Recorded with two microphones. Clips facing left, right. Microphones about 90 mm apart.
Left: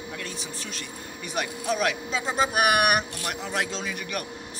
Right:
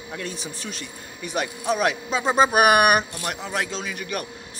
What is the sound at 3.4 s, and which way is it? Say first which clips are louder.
Speech: even; centre (ahead or behind).